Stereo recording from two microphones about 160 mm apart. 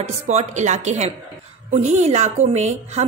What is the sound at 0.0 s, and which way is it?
A woman's voice, 45° right (ahead or behind).